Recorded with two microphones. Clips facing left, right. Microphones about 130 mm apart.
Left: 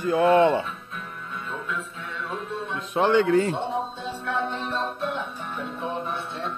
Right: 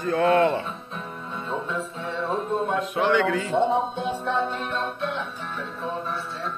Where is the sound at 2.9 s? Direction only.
30° left (ahead or behind).